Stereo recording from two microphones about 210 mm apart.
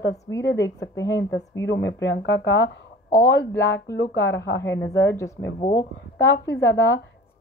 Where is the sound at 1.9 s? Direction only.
15° left (ahead or behind).